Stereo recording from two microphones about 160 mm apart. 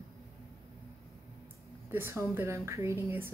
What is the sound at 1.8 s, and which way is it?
A woman's voice, 15° right (ahead or behind).